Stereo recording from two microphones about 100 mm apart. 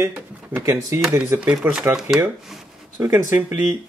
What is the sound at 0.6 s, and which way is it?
Speech, 30° right (ahead or behind).